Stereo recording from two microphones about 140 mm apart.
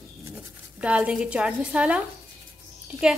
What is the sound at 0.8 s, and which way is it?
A woman's voice, 10° right (ahead or behind).